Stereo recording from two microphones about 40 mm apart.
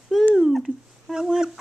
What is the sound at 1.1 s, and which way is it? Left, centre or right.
Speech, centre.